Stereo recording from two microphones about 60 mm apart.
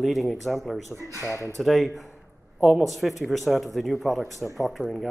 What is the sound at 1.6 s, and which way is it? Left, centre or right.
Speech, centre.